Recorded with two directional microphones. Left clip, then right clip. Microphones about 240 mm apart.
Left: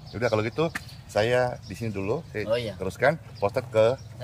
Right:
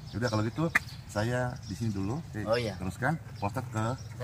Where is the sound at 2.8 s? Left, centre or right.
Left.